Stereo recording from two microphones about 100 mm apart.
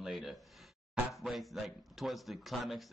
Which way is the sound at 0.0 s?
5° right (ahead or behind).